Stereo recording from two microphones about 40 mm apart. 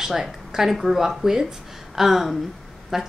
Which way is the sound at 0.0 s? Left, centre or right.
Centre.